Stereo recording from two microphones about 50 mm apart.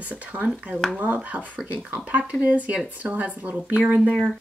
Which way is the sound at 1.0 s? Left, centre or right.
Right.